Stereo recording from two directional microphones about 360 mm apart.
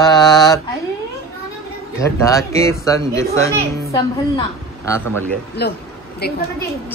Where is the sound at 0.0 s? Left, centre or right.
Centre.